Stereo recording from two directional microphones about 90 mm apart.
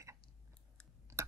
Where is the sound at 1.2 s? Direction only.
35° right (ahead or behind).